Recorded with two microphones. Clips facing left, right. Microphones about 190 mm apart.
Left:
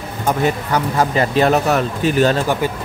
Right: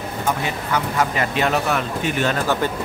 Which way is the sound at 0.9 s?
35° left (ahead or behind).